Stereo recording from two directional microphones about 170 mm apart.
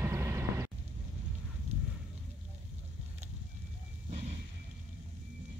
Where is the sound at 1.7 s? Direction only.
40° right (ahead or behind).